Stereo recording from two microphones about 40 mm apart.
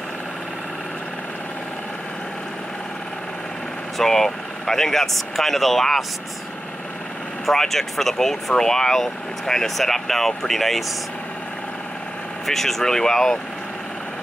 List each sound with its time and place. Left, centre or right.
4.0 s speech: centre
7.4 s speech: centre
12.4 s speech: centre